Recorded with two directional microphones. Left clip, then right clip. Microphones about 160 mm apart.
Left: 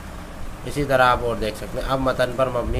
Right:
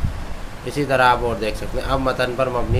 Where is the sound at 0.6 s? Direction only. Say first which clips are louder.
Right 1 dB; 20° left (ahead or behind).